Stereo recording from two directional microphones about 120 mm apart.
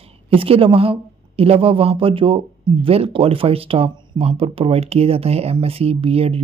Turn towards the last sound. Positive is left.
turn(degrees=-55)  # may be behind; listen again after turning